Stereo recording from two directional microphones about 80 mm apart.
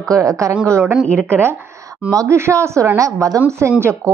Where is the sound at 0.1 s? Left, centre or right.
Right.